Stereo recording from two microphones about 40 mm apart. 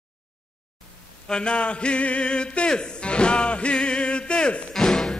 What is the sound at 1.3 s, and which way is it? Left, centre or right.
Music, left.